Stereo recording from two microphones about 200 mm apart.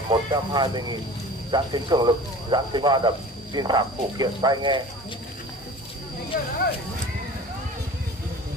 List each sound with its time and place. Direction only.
0.1 s speech: 20° right (ahead or behind)
6.3 s speech: 45° left (ahead or behind)